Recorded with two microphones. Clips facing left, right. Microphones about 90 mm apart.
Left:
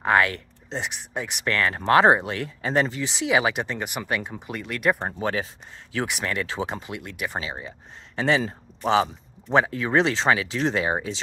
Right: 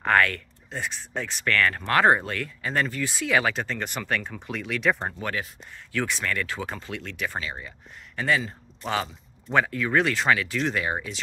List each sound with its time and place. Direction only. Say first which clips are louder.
0.0 s speech: left 1 dB; 15° left (ahead or behind)
5.2 s speech: left 4 dB; 25° left (ahead or behind)